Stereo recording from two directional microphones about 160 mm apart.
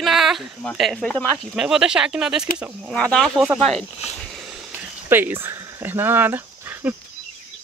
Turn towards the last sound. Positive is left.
turn(degrees=-10)  # may be behind; listen again after turning